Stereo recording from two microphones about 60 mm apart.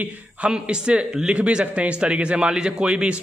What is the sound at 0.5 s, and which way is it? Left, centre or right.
A man's voice, centre.